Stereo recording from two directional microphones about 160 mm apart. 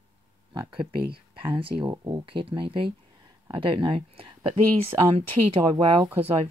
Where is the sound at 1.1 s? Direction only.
35° right (ahead or behind).